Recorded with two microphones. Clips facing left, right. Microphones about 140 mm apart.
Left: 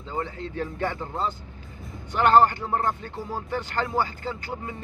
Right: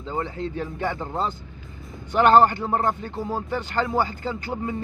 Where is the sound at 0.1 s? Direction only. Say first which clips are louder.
Right 3 dB; 20° right (ahead or behind).